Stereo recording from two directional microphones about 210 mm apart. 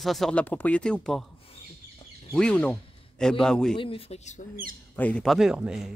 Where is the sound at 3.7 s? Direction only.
25° left (ahead or behind).